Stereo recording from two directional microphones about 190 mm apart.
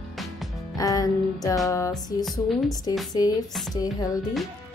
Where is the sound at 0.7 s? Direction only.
20° left (ahead or behind).